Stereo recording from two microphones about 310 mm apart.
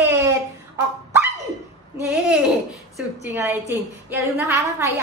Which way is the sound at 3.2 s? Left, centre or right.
Centre.